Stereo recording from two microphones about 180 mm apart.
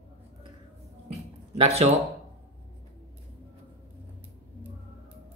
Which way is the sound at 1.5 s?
35° right (ahead or behind).